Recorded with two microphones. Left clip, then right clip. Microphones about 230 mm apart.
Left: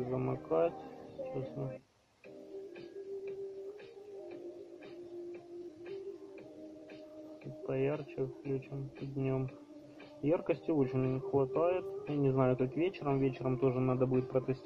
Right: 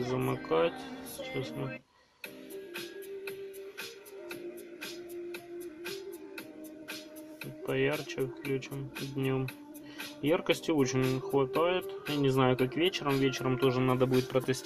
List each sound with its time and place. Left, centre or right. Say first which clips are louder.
0.1 s speech: right 3 dB; right
7.6 s speech: right 4 dB; right